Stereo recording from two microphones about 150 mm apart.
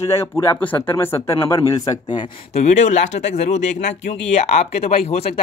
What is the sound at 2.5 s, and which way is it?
Speech, 50° left (ahead or behind).